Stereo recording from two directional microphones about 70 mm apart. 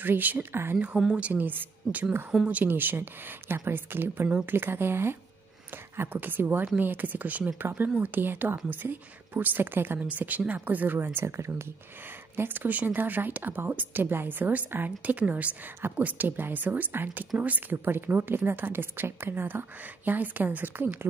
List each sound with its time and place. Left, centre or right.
0.0 s a woman's voice: right
11.2 s a woman's voice: right
12.4 s a woman's voice: right